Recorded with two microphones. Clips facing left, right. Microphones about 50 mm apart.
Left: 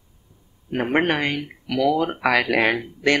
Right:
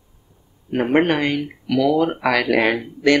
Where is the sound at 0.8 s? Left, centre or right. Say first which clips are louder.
Right 3 dB; centre.